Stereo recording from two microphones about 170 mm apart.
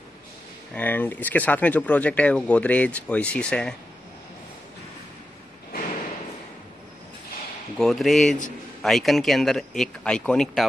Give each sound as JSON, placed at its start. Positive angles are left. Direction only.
{"t": 0.7, "sound": "speech", "side_deg": 10}
{"t": 7.7, "sound": "speech", "side_deg": 0}